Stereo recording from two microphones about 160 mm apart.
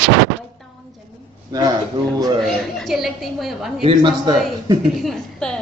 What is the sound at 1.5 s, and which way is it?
Speech, 25° right (ahead or behind).